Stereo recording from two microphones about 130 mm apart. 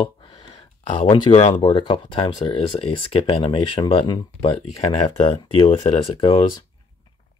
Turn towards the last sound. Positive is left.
turn(degrees=40)  # may be behind; listen again after turning